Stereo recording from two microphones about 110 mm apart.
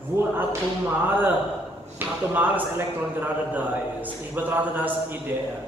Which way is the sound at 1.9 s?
15° right (ahead or behind).